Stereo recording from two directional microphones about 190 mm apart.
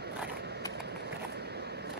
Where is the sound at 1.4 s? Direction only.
60° right (ahead or behind).